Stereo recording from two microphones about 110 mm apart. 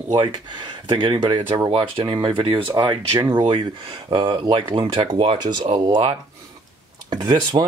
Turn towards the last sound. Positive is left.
turn(degrees=-40)  # may be behind; listen again after turning